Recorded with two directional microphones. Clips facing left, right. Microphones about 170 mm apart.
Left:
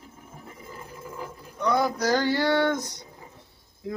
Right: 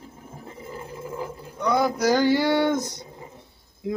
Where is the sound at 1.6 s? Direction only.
5° right (ahead or behind).